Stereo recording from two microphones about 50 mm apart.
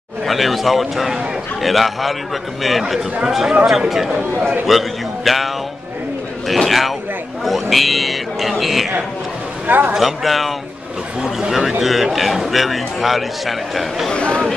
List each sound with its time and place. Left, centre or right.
0.2 s a man's voice: centre
3.3 s a man's voice: centre
9.7 s a man's voice: right
9.9 s a man's voice: centre
14.1 s speech: left